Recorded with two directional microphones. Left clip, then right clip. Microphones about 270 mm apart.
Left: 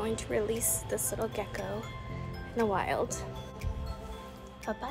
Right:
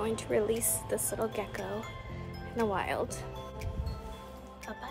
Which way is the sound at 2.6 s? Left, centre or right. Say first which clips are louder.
Left 2 dB; centre.